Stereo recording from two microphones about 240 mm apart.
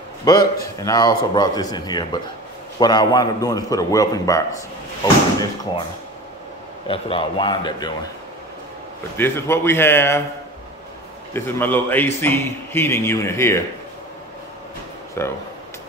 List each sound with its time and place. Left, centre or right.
0.2 s a man's voice: centre
6.9 s speech: left
9.1 s a man's voice: centre
11.3 s a man's voice: centre
15.2 s a man's voice: centre